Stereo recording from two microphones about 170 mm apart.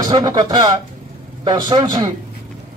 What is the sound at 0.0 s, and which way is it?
A man's voice, 25° right (ahead or behind).